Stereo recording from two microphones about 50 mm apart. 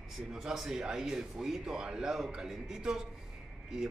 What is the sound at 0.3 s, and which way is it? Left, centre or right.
Speech, centre.